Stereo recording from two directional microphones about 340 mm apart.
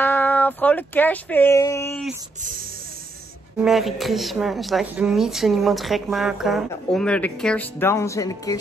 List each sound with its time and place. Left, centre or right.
0.0 s speech: centre
3.6 s a woman's voice: centre